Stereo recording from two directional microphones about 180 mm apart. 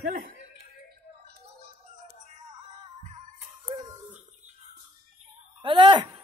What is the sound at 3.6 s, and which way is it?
Music, 20° right (ahead or behind).